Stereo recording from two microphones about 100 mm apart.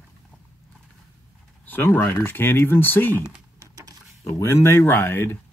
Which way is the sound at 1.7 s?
20° left (ahead or behind).